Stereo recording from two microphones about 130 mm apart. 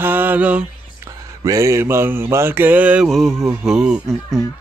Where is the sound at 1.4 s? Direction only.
25° right (ahead or behind).